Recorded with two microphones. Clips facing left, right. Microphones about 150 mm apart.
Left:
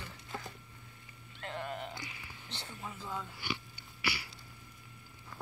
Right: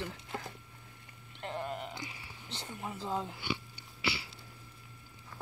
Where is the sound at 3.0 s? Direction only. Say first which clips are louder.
Right 7 dB; 30° right (ahead or behind).